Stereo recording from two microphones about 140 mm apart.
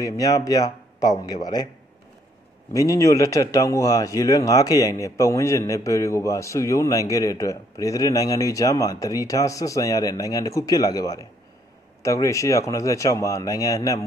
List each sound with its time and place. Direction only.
0.0 s a man's voice: 25° left (ahead or behind)
2.7 s a man's voice: 25° left (ahead or behind)